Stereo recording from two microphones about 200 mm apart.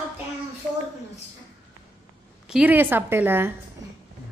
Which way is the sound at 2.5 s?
5° right (ahead or behind).